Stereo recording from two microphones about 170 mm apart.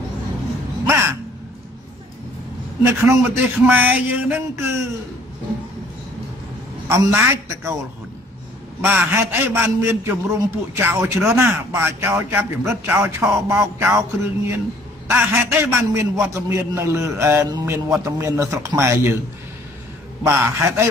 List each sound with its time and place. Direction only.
0.8 s crow: 15° right (ahead or behind)
2.8 s a man's voice: 15° right (ahead or behind)
6.9 s a man's voice: 15° right (ahead or behind)
8.8 s a man's voice: 15° right (ahead or behind)
15.0 s a man's voice: 15° right (ahead or behind)
20.2 s a man's voice: 15° right (ahead or behind)